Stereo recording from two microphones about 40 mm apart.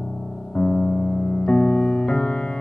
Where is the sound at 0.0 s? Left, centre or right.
Centre.